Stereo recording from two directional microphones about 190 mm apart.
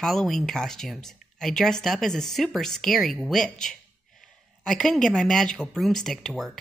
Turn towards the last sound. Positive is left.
turn(degrees=0)  # may be behind; listen again after turning